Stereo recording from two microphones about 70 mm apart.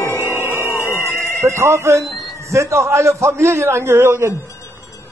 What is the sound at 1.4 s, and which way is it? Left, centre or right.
A man's voice, right.